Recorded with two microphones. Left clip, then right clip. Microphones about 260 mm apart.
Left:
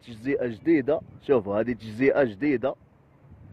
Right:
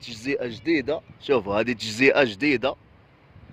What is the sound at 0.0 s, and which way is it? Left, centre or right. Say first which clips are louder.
A man's voice: even; centre.